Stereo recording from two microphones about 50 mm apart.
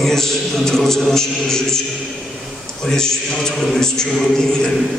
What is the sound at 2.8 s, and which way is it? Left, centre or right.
Speech, centre.